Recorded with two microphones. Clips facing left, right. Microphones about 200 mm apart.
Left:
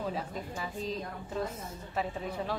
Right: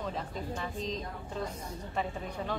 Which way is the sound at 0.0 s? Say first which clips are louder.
Left 1 dB; 5° left (ahead or behind).